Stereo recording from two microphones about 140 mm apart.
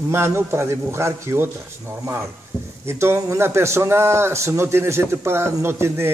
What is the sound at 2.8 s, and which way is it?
Speech, 20° right (ahead or behind).